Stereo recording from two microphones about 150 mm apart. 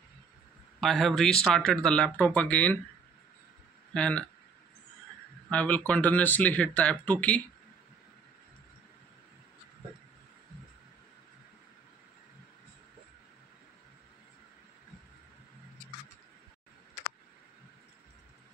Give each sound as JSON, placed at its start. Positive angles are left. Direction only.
{"t": 0.7, "sound": "speech", "side_deg": 0}
{"t": 3.9, "sound": "speech", "side_deg": 5}
{"t": 5.5, "sound": "speech", "side_deg": 10}